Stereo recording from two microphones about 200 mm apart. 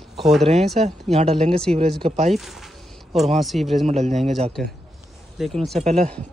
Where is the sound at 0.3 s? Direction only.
Centre (ahead or behind).